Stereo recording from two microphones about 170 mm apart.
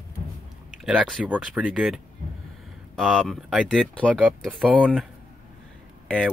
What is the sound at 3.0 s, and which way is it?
Speech, centre (ahead or behind).